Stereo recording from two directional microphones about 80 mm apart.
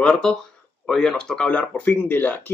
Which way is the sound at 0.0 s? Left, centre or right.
Centre.